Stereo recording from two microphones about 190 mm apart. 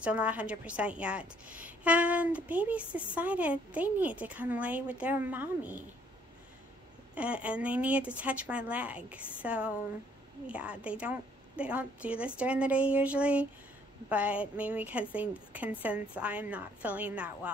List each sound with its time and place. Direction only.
0.0 s a woman's voice: 5° right (ahead or behind)
7.2 s a woman's voice: 5° right (ahead or behind)